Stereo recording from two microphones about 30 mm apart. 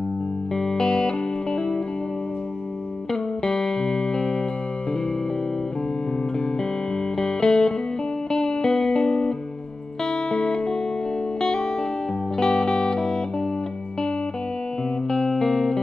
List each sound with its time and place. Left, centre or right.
0.6 s music: left
3.1 s music: centre
7.2 s music: left
15.0 s music: centre